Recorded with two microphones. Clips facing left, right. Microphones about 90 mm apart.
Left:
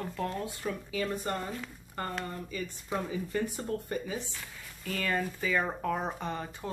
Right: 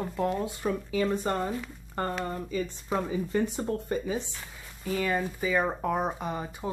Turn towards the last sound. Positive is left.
turn(degrees=-15)  # may be behind; listen again after turning